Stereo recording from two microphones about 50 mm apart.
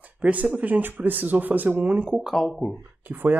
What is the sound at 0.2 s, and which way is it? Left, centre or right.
Speech, right.